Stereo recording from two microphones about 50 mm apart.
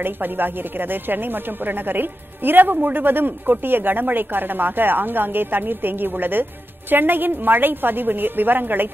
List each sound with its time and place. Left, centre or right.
0.0 s a woman's voice: right